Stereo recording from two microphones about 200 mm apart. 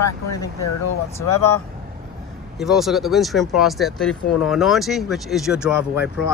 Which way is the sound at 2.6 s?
Centre (ahead or behind).